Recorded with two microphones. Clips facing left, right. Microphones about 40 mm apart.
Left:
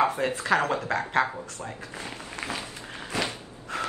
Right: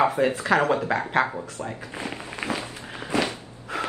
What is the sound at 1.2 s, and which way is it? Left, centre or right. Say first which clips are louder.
Speech: right 3 dB; right.